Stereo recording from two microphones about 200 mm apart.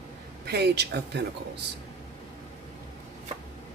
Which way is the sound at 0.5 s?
55° right (ahead or behind).